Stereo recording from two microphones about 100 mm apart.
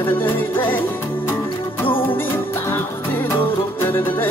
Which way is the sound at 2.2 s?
25° left (ahead or behind).